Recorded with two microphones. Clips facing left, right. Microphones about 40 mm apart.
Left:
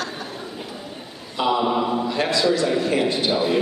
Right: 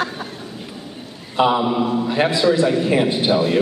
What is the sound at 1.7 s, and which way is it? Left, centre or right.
Speech, centre.